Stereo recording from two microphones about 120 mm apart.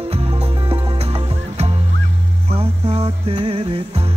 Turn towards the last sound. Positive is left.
turn(degrees=-60)  # may be behind; listen again after turning